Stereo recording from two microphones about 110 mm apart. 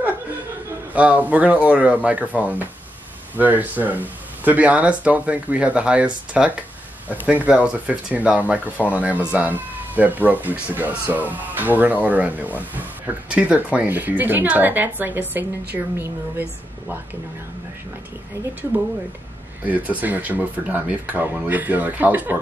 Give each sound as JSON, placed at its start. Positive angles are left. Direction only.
{"t": 0.9, "sound": "speech", "side_deg": -15}
{"t": 19.6, "sound": "speech", "side_deg": -15}